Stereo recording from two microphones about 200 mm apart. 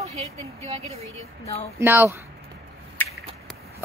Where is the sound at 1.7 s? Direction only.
10° right (ahead or behind).